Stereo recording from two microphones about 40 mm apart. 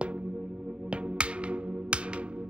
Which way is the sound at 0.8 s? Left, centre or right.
Right.